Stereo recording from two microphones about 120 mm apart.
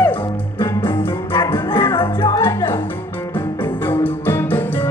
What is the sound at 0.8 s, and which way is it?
Music, 40° left (ahead or behind).